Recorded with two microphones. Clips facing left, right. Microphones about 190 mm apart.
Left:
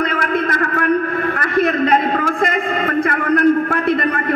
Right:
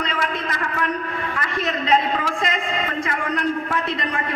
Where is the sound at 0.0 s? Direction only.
55° left (ahead or behind).